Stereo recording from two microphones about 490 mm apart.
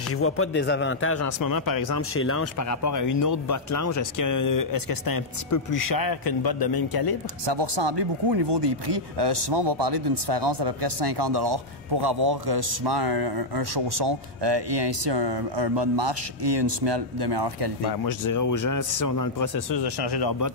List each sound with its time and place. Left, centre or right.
0.2 s a man's voice: left
1.4 s speech: left
2.1 s speech: left
7.4 s speech: right
18.0 s speech: left